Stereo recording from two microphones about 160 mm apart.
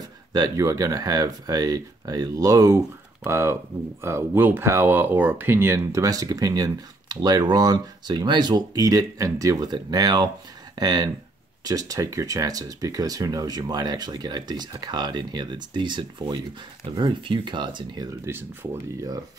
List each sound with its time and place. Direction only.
0.3 s speech: 20° right (ahead or behind)
18.3 s speech: 15° right (ahead or behind)